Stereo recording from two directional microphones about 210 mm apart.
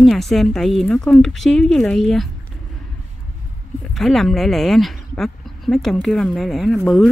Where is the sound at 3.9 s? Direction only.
Centre (ahead or behind).